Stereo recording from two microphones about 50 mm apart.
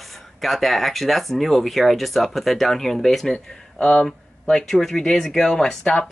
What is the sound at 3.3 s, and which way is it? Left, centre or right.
Speech, left.